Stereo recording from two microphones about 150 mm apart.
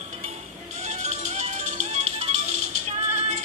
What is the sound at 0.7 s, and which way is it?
Music, 50° right (ahead or behind).